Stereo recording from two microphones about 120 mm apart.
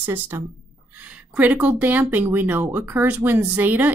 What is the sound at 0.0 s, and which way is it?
A woman's voice, 20° right (ahead or behind).